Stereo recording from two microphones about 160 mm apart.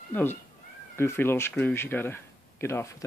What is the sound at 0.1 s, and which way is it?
Speech, 15° left (ahead or behind).